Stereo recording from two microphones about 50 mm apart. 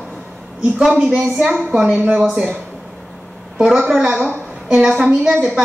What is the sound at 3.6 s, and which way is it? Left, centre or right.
Speech, centre.